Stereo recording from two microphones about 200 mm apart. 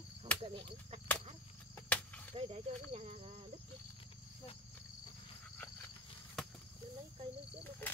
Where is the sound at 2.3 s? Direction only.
30° right (ahead or behind).